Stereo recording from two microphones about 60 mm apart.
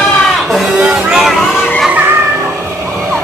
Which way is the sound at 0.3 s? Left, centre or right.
Centre.